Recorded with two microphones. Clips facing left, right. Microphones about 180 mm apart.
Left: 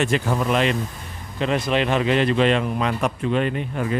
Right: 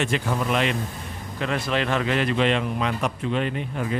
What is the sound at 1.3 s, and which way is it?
A man's voice, 20° left (ahead or behind).